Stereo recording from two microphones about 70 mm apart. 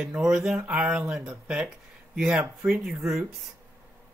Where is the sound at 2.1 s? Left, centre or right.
Centre.